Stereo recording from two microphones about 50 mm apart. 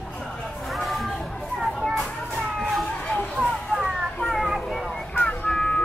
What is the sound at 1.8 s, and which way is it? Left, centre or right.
Children playing, centre.